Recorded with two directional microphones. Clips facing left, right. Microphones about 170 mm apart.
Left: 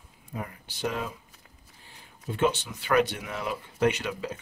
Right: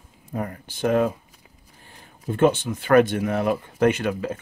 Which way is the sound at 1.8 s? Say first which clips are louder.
Right 5 dB; 50° right (ahead or behind).